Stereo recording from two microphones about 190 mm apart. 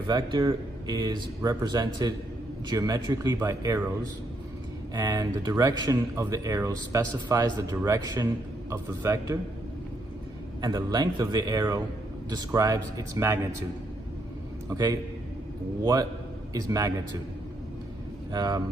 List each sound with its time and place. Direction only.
0.0 s a man's voice: 25° right (ahead or behind)
10.6 s a man's voice: 20° right (ahead or behind)
14.7 s a man's voice: 20° right (ahead or behind)
18.3 s a man's voice: 20° right (ahead or behind)